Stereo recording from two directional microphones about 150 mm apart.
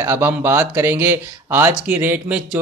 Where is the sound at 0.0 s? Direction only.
15° right (ahead or behind).